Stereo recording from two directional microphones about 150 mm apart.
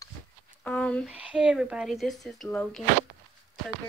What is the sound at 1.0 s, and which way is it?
Speech, 10° right (ahead or behind).